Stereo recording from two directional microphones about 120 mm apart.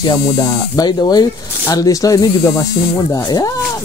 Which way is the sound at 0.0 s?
35° left (ahead or behind).